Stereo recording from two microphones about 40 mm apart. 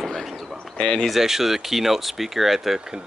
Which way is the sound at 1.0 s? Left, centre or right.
Centre.